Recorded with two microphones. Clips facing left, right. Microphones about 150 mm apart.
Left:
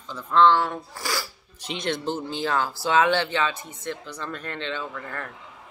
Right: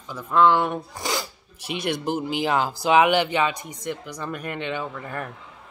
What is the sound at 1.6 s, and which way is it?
Speech, 10° right (ahead or behind).